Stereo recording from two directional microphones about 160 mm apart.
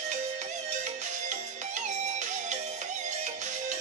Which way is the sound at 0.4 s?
50° right (ahead or behind).